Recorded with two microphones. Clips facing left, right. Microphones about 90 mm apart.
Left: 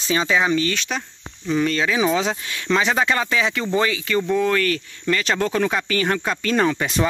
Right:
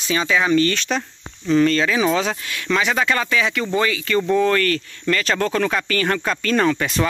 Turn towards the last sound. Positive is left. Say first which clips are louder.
# right 1 dB
turn(degrees=15)  # may be behind; listen again after turning